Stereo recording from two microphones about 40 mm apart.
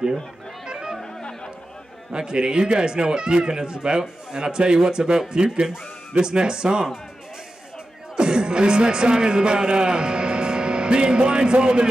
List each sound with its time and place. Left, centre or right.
0.7 s music: centre
2.1 s speech: right
8.2 s speech: right